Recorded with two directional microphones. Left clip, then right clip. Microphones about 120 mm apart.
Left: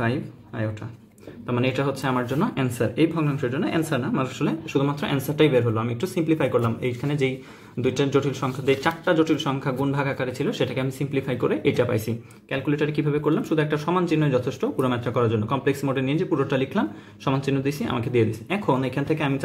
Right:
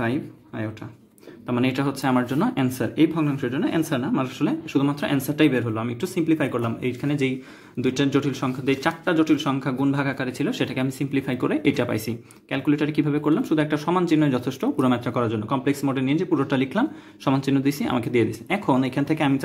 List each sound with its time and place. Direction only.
0.0 s speech: 30° right (ahead or behind)